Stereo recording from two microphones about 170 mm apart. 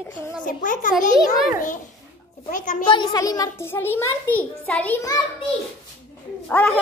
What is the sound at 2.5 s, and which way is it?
Speech, 50° left (ahead or behind).